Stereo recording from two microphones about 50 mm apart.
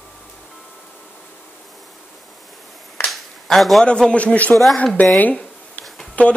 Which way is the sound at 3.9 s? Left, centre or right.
Left.